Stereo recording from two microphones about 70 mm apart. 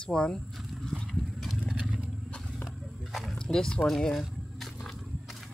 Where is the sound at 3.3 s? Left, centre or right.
Centre.